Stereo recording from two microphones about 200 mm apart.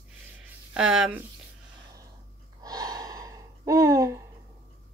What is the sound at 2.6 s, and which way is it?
Gasp, 20° right (ahead or behind).